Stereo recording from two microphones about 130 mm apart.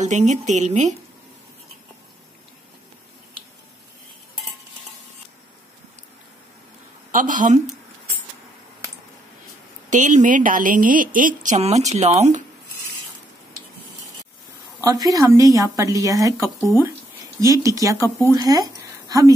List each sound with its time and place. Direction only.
0.0 s speech: 65° right (ahead or behind)
7.1 s speech: 90° right
9.8 s speech: 75° right (ahead or behind)
14.8 s speech: 25° right (ahead or behind)
16.6 s speech: 15° right (ahead or behind)
17.4 s speech: 25° right (ahead or behind)